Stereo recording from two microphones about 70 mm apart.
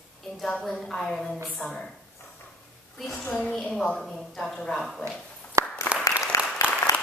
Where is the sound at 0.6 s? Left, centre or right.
Centre.